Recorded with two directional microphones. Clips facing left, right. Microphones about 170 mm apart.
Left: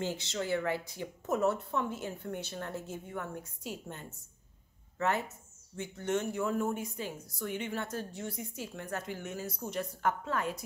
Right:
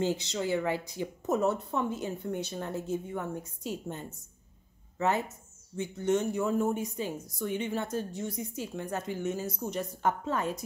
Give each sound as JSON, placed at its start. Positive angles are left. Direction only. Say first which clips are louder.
{"t": 0.0, "sound": "a woman's voice", "louder": "right 5 dB", "side_deg": -20}